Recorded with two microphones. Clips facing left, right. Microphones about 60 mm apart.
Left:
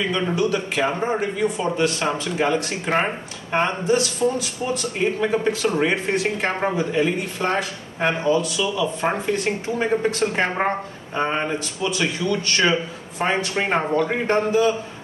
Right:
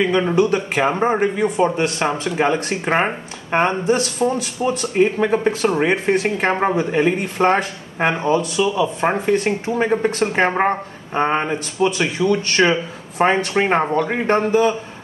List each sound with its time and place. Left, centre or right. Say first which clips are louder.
0.1 s speech: right 5 dB; right